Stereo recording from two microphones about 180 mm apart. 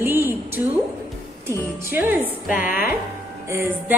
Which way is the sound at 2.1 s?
50° left (ahead or behind).